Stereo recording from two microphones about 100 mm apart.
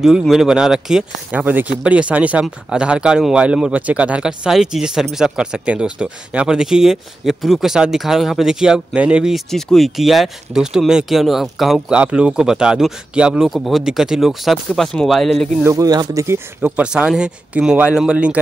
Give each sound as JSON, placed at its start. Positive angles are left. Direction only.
{"t": 0.2, "sound": "speech", "side_deg": -5}
{"t": 1.4, "sound": "speech", "side_deg": -20}
{"t": 15.6, "sound": "speech", "side_deg": -35}
{"t": 16.6, "sound": "speech", "side_deg": -10}